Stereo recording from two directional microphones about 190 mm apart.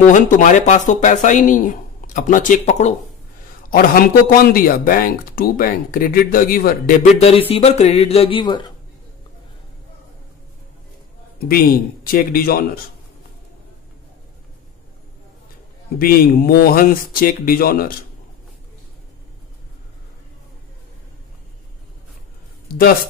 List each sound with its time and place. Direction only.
0.0 s speech: 40° left (ahead or behind)
4.5 s speech: 50° left (ahead or behind); by 8.7 s 25° left (ahead or behind)
11.4 s speech: 50° left (ahead or behind)
16.0 s speech: 50° left (ahead or behind)
22.7 s a man's voice: 50° left (ahead or behind)